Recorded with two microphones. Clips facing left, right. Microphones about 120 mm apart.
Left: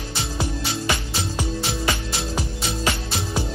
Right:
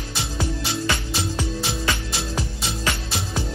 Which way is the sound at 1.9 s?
15° left (ahead or behind).